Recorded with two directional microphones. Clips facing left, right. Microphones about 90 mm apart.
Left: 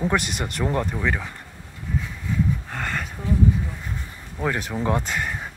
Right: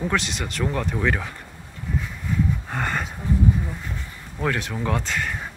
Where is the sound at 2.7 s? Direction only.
10° right (ahead or behind).